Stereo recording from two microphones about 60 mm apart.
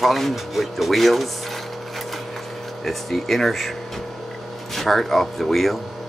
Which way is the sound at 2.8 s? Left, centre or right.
Centre.